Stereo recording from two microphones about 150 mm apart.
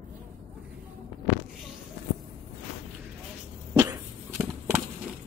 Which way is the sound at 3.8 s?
15° right (ahead or behind).